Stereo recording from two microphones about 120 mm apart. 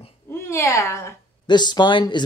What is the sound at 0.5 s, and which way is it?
Speech, 25° left (ahead or behind).